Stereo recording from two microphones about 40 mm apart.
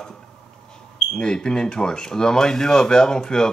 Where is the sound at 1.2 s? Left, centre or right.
Centre.